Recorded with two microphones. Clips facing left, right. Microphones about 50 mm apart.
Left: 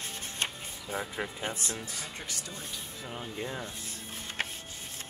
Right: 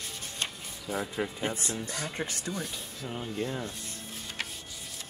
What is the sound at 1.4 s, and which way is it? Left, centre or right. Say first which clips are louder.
Speech: right 3 dB; right.